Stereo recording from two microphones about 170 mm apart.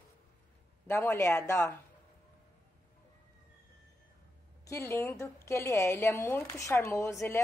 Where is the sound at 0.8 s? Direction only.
15° left (ahead or behind).